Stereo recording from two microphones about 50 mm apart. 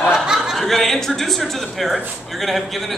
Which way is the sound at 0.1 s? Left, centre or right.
Centre.